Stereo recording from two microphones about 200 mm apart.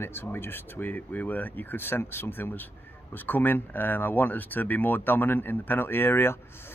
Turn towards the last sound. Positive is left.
turn(degrees=10)  # may be behind; listen again after turning